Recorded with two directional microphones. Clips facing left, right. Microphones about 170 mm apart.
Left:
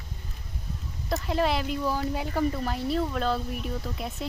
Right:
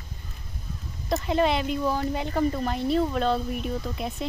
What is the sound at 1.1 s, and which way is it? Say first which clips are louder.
Speech: right 3 dB; centre (ahead or behind).